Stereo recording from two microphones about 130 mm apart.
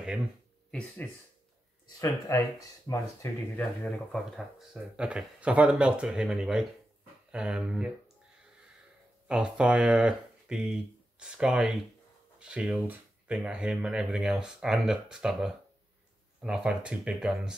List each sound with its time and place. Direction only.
0.7 s speech: 10° left (ahead or behind)
2.0 s speech: 25° left (ahead or behind)
3.5 s speech: 10° left (ahead or behind)
4.6 s speech: 5° right (ahead or behind)
9.3 s speech: 5° right (ahead or behind)